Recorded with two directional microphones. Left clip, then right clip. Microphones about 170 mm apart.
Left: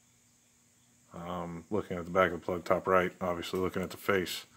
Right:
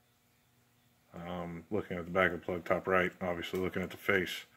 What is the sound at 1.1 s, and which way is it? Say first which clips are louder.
Speech: left 3 dB; 15° left (ahead or behind).